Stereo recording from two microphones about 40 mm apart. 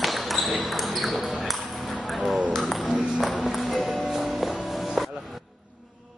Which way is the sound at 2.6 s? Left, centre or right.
Centre.